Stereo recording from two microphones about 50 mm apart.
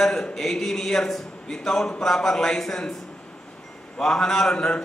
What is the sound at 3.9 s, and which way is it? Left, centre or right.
Speech, centre.